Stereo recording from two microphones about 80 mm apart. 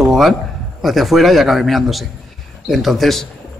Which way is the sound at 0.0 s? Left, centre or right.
Centre.